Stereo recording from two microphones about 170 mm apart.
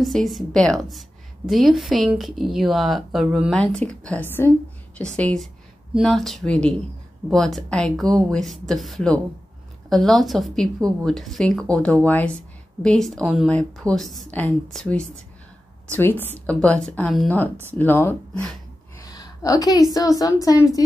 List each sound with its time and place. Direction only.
0.0 s a woman's voice: centre (ahead or behind); by 20.8 s 20° left (ahead or behind)